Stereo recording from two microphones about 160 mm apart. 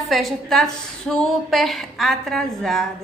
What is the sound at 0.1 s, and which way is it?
A woman's voice, centre (ahead or behind).